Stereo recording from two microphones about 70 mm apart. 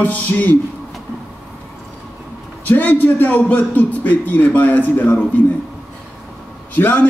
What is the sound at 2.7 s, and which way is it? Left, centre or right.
A man's voice, left.